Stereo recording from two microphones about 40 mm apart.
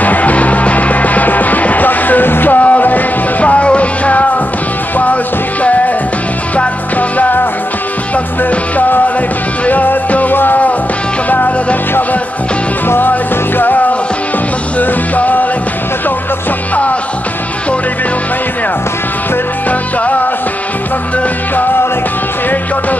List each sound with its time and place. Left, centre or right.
0.0 s music: left
2.6 s music: left
8.5 s music: left
12.8 s music: left
13.1 s music: left
14.8 s music: left